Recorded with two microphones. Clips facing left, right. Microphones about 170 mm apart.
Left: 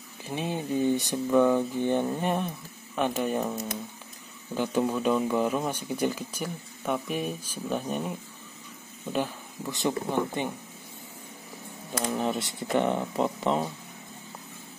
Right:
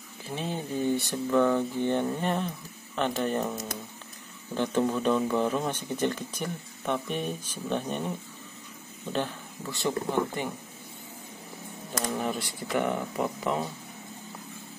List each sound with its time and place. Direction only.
0.3 s speech: 15° left (ahead or behind)
9.1 s speech: 15° left (ahead or behind)
11.9 s speech: 20° left (ahead or behind)